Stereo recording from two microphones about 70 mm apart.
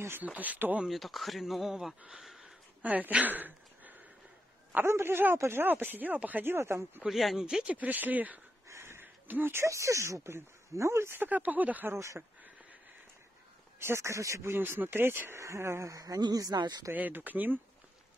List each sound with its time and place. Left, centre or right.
0.2 s speech: right
0.8 s speech: centre
2.8 s speech: right
4.8 s speech: right
7.1 s speech: centre
7.7 s speech: right
8.6 s a sound: right
9.7 s speech: right
11.2 s speech: right
11.9 s speech: right
13.7 s speech: right
15.9 s speech: right
16.9 s speech: right